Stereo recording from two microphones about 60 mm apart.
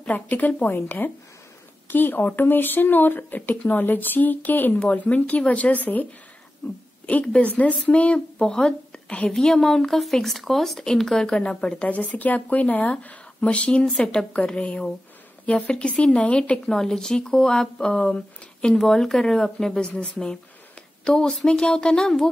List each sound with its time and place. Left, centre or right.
0.0 s speech: left
18.8 s speech: centre